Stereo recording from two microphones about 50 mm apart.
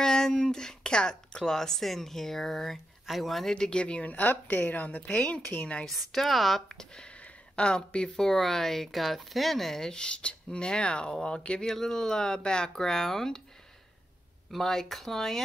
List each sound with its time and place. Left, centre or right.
0.0 s speech: centre
3.5 s a woman's voice: centre
5.9 s a woman's voice: centre
6.7 s speech: centre
11.6 s speech: centre
14.5 s speech: centre